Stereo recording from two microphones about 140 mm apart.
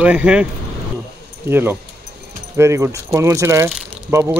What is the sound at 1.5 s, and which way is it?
Speech, 15° right (ahead or behind).